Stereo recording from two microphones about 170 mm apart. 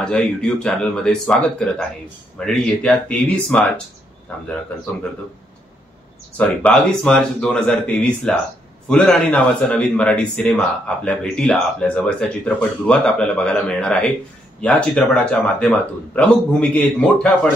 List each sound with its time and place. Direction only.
0.0 s speech: 5° left (ahead or behind)
6.3 s speech: 5° left (ahead or behind)